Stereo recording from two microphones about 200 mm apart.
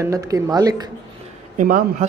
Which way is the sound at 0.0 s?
15° right (ahead or behind).